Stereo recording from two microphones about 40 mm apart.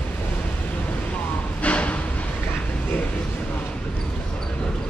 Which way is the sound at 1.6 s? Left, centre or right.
Left.